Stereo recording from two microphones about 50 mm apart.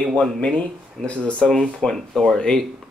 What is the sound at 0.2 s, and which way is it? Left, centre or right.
Speech, left.